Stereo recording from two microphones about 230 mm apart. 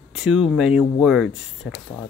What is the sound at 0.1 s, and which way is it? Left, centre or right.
Speech, centre.